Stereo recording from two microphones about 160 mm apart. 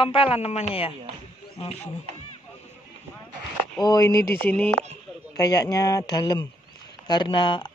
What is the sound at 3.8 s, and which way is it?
Speech, 25° left (ahead or behind).